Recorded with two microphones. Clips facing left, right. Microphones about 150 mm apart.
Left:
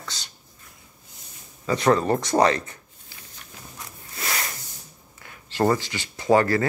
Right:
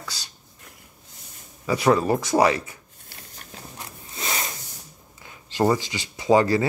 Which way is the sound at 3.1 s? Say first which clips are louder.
Right 3 dB; 50° right (ahead or behind).